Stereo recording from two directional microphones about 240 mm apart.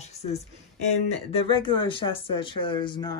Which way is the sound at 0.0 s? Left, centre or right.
Left.